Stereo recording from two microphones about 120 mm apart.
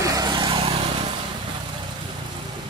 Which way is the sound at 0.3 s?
40° right (ahead or behind).